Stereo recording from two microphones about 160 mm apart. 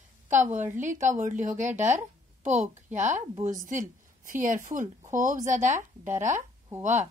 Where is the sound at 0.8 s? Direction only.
50° right (ahead or behind).